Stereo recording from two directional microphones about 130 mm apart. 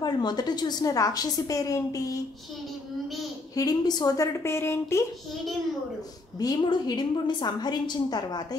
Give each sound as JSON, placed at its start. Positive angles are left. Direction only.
{"t": 0.0, "sound": "a woman's voice", "side_deg": 35}
{"t": 3.5, "sound": "a woman's voice", "side_deg": 30}
{"t": 6.4, "sound": "a woman's voice", "side_deg": 35}